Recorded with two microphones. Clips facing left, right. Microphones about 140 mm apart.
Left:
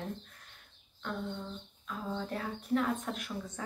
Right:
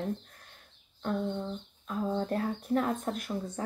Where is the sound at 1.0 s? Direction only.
45° right (ahead or behind).